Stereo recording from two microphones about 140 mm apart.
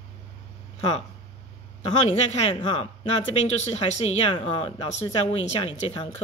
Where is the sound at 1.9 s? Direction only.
50° left (ahead or behind).